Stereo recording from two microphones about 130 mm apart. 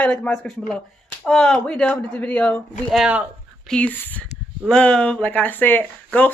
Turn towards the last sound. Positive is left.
turn(degrees=10)  # may be behind; listen again after turning